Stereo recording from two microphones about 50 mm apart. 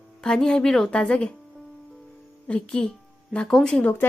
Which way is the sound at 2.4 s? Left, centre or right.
Left.